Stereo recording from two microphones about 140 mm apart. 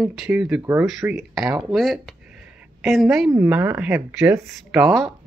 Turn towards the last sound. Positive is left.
turn(degrees=0)  # may be behind; listen again after turning